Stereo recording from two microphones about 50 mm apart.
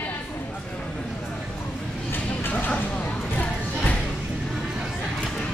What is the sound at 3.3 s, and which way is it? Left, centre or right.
Music, left.